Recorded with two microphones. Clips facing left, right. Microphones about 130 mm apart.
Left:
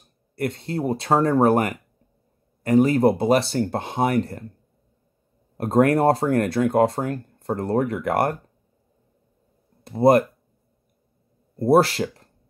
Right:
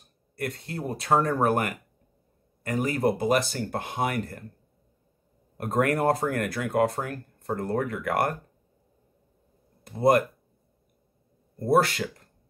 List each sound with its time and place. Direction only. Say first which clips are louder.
0.4 s speech: left 7 dB; 25° left (ahead or behind)
5.6 s speech: left 7 dB; 30° left (ahead or behind)
9.8 s speech: left 5 dB; 30° left (ahead or behind)
11.5 s speech: left 5 dB; 30° left (ahead or behind)